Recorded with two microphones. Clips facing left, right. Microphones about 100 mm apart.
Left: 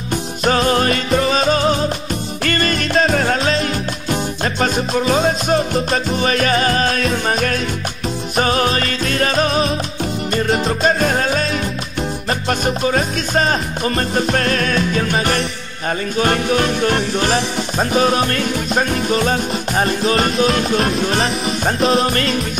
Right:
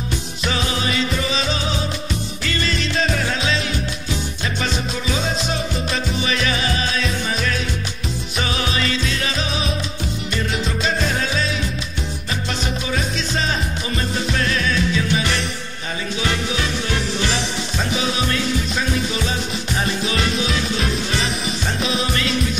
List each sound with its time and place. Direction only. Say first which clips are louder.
0.4 s music: left 9 dB; 50° left (ahead or behind)